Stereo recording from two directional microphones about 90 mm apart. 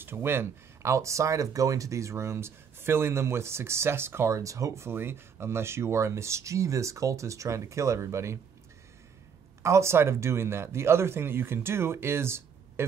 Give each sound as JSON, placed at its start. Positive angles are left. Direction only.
{"t": 0.0, "sound": "speech", "side_deg": -25}
{"t": 9.6, "sound": "speech", "side_deg": -30}